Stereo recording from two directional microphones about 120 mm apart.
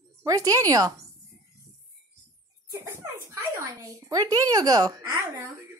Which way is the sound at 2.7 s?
20° right (ahead or behind).